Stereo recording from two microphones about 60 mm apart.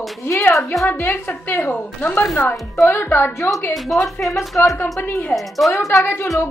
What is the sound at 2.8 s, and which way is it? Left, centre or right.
Speech, left.